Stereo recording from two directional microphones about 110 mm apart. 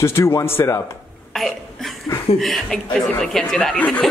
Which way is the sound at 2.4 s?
5° left (ahead or behind).